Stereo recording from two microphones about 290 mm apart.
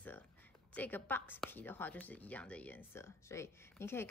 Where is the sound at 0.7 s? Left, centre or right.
Centre.